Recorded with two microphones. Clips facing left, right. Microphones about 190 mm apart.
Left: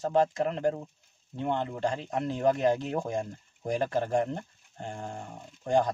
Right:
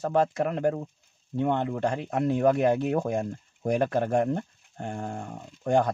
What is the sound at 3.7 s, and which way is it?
Speech, 55° right (ahead or behind).